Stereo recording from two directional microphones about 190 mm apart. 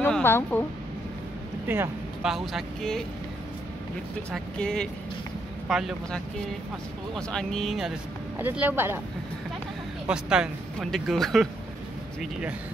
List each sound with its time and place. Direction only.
0.0 s speech: 10° left (ahead or behind)
1.7 s speech: 10° right (ahead or behind)
2.3 s speech: centre (ahead or behind)
4.3 s speech: 5° left (ahead or behind); by 9.0 s 10° right (ahead or behind)
10.0 s speech: 5° right (ahead or behind)